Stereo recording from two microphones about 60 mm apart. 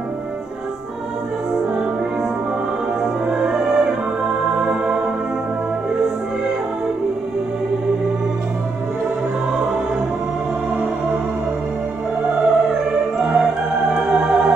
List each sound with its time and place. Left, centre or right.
3.0 s music: centre
12.3 s opera: centre